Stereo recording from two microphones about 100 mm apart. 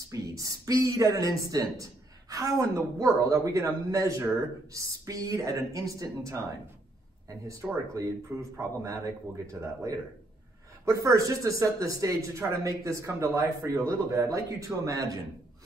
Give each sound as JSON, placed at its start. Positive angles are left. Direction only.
{"t": 0.1, "sound": "speech", "side_deg": -35}